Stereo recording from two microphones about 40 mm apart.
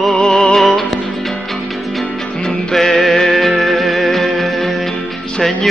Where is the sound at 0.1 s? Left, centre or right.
Centre.